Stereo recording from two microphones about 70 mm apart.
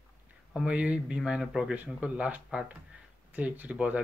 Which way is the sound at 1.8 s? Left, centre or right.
Right.